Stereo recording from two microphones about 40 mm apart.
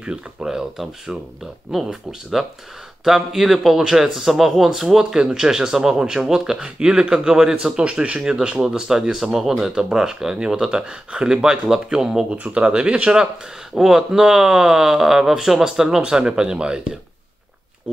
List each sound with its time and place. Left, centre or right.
0.0 s speech: right
1.9 s speech: centre
12.3 s speech: right
13.7 s speech: centre